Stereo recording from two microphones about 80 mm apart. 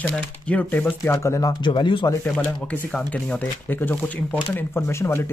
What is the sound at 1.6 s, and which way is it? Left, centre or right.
Speech, left.